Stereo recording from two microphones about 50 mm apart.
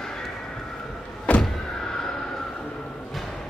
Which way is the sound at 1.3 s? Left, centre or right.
Left.